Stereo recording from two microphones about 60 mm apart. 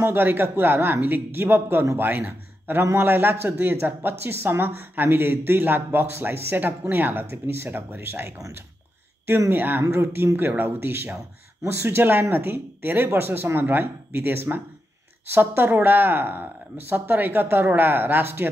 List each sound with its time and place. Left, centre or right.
0.0 s a man's voice: right
9.5 s a man's voice: right